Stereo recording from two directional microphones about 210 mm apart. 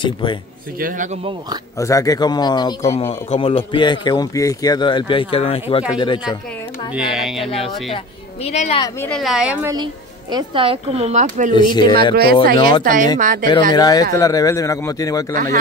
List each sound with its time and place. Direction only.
0.0 s speech: 25° left (ahead or behind)
0.7 s speech: 40° right (ahead or behind)
1.8 s speech: 15° left (ahead or behind)
6.9 s a woman's voice: centre (ahead or behind)
8.5 s speech: 30° left (ahead or behind)
8.8 s a woman's voice: 5° left (ahead or behind); by 9.8 s 15° right (ahead or behind)
10.3 s speech: 25° right (ahead or behind)
11.7 s speech: 20° left (ahead or behind)
12.8 s speech: 40° right (ahead or behind)
13.5 s speech: 20° left (ahead or behind)